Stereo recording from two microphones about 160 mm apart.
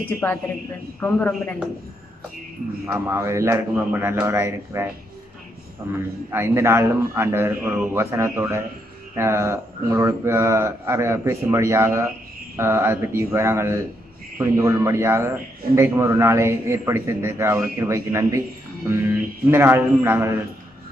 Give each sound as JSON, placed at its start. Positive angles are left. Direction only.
{"t": 0.2, "sound": "speech", "side_deg": 10}
{"t": 2.9, "sound": "a man's voice", "side_deg": -15}
{"t": 6.3, "sound": "a man's voice", "side_deg": -15}